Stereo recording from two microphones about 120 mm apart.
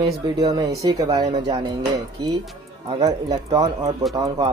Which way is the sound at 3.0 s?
30° right (ahead or behind).